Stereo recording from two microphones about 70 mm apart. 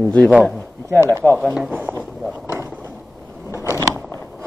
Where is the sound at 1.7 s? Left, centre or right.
Right.